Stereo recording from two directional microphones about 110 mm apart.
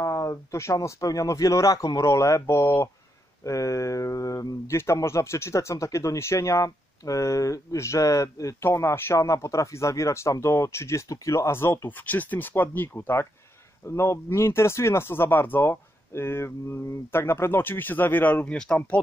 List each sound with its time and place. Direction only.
0.0 s speech: 30° left (ahead or behind); by 18.9 s 10° left (ahead or behind)